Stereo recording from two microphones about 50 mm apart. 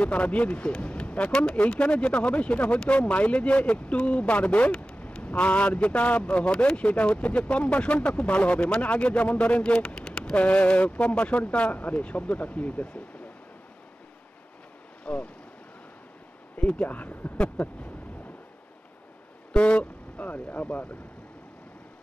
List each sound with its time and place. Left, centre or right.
0.0 s speech: left
15.1 s speech: left
16.5 s speech: left
17.4 s speech: left
19.5 s speech: left